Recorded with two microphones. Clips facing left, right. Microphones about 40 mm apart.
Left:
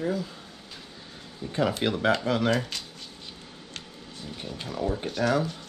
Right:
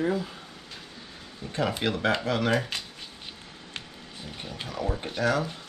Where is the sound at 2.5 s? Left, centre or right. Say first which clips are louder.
Even; right.